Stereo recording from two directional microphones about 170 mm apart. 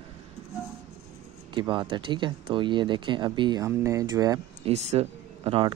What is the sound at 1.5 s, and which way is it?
Speech, 30° right (ahead or behind).